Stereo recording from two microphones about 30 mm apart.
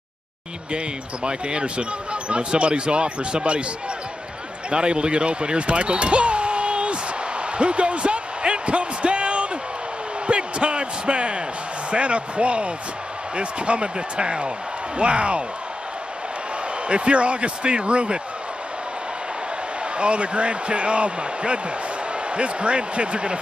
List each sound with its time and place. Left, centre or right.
0.7 s speech: right
4.6 s basketball bounce: right
10.2 s speech: right
16.8 s speech: right
20.0 s speech: right